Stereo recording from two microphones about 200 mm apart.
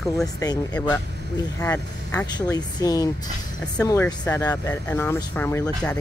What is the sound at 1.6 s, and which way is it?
Speech, 10° left (ahead or behind).